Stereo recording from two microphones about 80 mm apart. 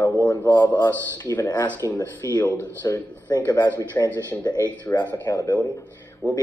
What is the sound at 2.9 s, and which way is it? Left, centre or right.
Speech, left.